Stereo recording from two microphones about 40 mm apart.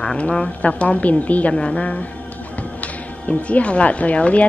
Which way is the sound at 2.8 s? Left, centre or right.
Left.